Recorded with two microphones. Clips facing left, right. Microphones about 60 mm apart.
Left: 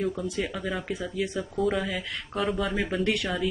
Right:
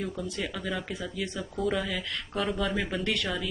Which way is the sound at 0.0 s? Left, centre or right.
Centre.